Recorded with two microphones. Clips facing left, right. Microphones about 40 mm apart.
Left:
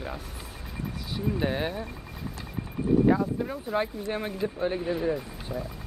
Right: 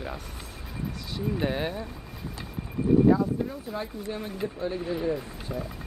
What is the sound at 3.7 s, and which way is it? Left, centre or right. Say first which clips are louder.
Speech: left 5 dB; left.